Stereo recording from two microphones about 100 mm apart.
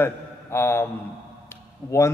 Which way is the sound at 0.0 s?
25° left (ahead or behind).